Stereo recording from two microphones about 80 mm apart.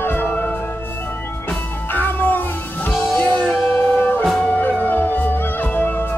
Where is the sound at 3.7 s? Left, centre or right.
Left.